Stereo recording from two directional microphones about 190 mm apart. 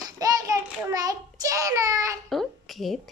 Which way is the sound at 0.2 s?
20° right (ahead or behind).